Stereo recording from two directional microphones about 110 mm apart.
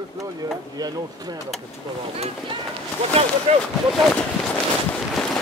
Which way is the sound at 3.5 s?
90° right.